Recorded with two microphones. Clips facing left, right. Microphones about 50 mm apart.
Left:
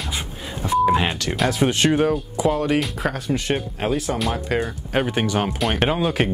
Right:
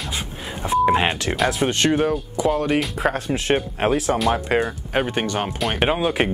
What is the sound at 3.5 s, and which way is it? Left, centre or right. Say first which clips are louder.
Speech: right 6 dB; right.